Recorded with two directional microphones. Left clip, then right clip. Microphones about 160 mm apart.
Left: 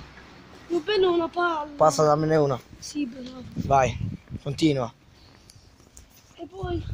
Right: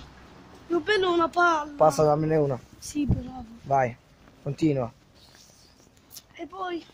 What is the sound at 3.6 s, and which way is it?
Speech, 10° right (ahead or behind).